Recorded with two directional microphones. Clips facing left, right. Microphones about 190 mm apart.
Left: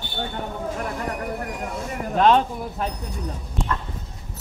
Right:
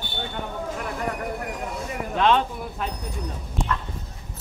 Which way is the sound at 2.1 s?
40° left (ahead or behind).